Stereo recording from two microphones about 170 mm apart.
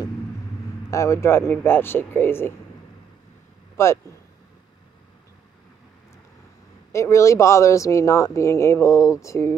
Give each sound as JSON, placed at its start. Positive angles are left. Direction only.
{"t": 0.8, "sound": "speech", "side_deg": 15}
{"t": 3.7, "sound": "speech", "side_deg": 15}
{"t": 6.9, "sound": "speech", "side_deg": 15}